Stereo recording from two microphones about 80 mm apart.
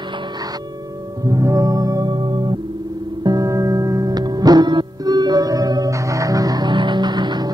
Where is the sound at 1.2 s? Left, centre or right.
Right.